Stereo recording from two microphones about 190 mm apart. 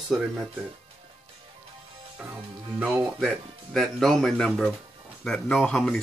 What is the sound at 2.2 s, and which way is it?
Speech, 10° right (ahead or behind).